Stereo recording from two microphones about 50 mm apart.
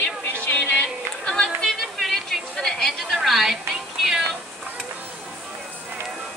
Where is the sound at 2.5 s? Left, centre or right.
Centre.